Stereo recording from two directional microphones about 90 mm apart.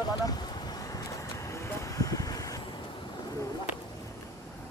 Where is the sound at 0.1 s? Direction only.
50° left (ahead or behind).